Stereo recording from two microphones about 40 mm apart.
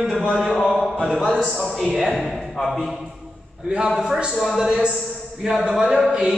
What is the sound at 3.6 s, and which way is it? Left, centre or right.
A man's voice, right.